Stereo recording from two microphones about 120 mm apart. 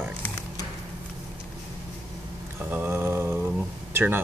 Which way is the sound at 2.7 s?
15° right (ahead or behind).